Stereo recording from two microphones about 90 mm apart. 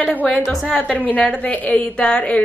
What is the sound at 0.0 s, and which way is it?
Speech, 15° left (ahead or behind).